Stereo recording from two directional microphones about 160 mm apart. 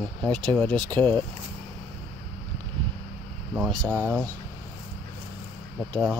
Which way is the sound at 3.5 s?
5° right (ahead or behind).